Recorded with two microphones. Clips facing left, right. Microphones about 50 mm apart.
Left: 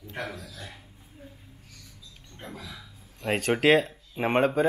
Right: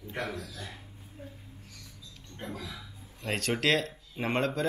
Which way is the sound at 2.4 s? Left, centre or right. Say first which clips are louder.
Right 2 dB; centre.